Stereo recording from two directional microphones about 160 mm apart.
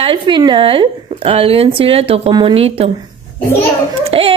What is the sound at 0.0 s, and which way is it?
Speech, 30° right (ahead or behind).